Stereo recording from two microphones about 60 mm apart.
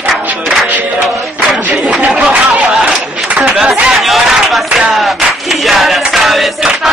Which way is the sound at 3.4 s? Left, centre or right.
Centre.